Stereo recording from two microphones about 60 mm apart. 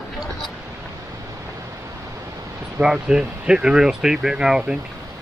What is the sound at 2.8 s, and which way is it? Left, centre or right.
Speech, centre.